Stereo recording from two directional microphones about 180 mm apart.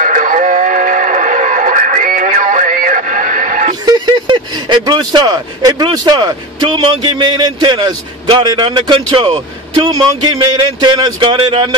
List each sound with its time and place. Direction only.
0.0 s radio: 45° right (ahead or behind)
3.8 s speech: 25° right (ahead or behind)